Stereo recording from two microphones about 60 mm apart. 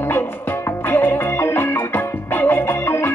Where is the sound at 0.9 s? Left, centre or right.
Left.